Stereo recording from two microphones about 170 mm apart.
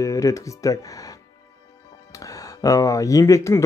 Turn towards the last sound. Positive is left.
turn(degrees=15)  # may be behind; listen again after turning